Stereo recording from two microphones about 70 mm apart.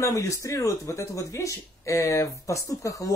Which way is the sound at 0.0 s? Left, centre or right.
Left.